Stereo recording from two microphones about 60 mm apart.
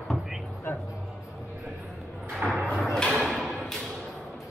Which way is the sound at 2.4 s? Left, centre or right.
Right.